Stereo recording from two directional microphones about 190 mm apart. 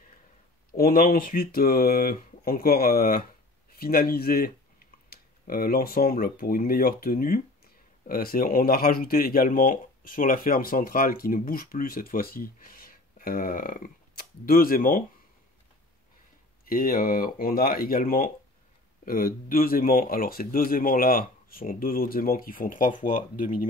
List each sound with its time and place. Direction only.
0.7 s speech: 50° left (ahead or behind)
16.6 s speech: 50° left (ahead or behind)